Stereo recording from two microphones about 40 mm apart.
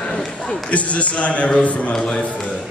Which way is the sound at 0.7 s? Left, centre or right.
Left.